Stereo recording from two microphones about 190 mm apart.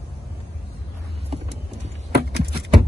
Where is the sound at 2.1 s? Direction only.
55° right (ahead or behind).